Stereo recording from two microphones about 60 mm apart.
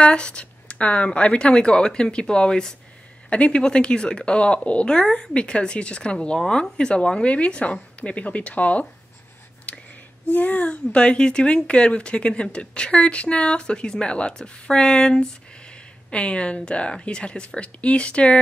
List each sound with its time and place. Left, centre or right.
0.0 s speech: centre
9.7 s a sound: centre
10.3 s speech: left